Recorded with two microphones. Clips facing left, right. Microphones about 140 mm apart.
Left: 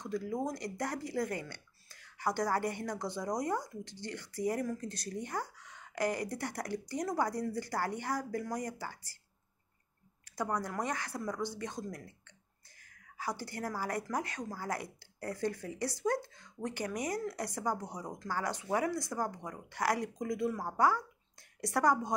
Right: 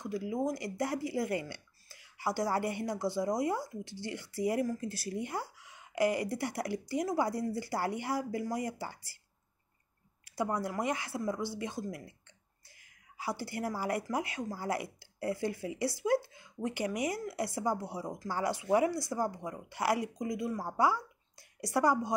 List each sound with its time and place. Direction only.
0.0 s speech: 5° right (ahead or behind)
10.2 s speech: 10° right (ahead or behind)
13.2 s speech: 10° right (ahead or behind)